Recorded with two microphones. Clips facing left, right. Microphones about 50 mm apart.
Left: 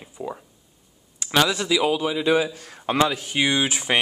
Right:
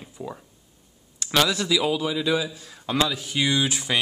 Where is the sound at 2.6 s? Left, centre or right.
Left.